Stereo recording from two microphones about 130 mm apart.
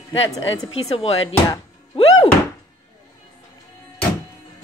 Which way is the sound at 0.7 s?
50° left (ahead or behind).